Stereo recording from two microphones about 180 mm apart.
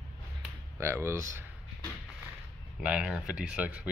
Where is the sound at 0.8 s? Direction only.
15° right (ahead or behind).